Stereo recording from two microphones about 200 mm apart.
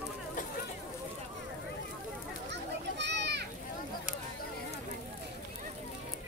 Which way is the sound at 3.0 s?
60° right (ahead or behind).